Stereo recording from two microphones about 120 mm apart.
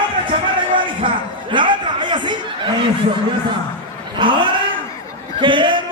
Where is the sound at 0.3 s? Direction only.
45° right (ahead or behind).